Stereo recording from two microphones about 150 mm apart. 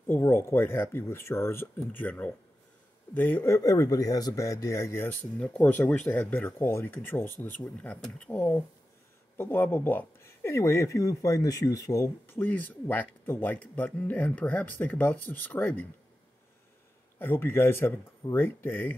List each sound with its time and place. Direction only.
0.0 s speech: 15° left (ahead or behind)
17.2 s speech: 15° left (ahead or behind)